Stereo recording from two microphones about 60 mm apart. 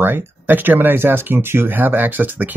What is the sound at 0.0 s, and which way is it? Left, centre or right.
Speech, right.